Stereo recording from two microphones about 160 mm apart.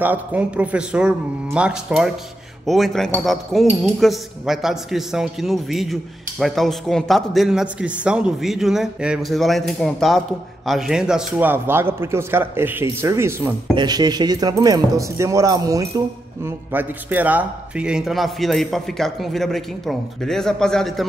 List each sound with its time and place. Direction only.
0.0 s a man's voice: 10° right (ahead or behind)
16.4 s a man's voice: 10° right (ahead or behind)